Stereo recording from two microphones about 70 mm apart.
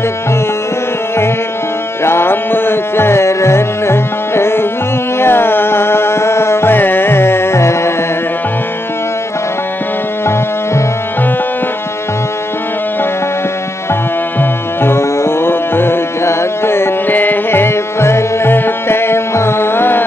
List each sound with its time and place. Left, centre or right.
2.0 s music: left
14.4 s music: left